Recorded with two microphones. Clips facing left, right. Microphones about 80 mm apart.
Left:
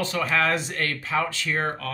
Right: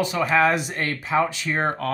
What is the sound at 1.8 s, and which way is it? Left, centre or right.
Speech, right.